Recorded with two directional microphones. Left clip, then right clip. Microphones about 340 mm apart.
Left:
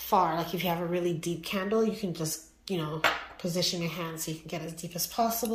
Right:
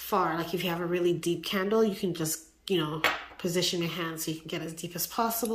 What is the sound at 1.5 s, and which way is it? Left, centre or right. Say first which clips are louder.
Speech: right 1 dB; right.